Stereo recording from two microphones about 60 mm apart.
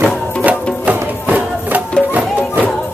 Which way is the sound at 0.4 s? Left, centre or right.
Right.